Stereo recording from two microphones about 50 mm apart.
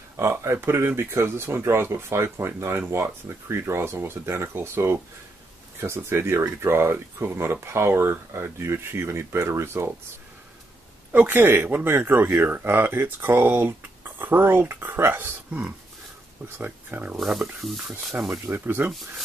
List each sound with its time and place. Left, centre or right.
0.2 s speech: right
3.9 s speech: right
5.9 s speech: right
6.1 s speech: right
11.1 s speech: right
15.0 s speech: right
17.2 s speech: centre
18.2 s speech: right
18.5 s speech: right
18.9 s speech: centre